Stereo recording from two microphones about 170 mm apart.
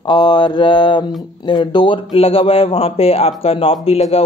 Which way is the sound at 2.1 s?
35° left (ahead or behind).